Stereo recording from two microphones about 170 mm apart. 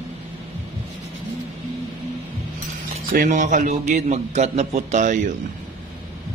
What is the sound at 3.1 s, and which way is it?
A man's voice, 50° right (ahead or behind).